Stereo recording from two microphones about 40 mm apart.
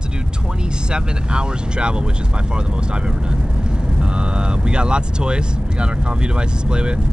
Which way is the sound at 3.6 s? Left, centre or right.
Right.